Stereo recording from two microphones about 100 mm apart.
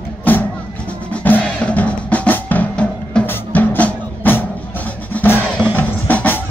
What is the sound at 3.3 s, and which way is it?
Music, 20° left (ahead or behind).